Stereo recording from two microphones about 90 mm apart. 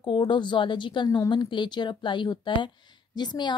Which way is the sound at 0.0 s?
65° left (ahead or behind).